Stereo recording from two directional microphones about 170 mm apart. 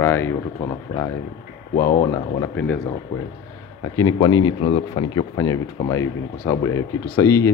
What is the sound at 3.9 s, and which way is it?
Speech, 25° left (ahead or behind).